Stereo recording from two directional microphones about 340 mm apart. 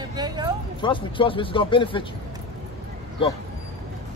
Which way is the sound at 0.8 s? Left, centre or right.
Centre.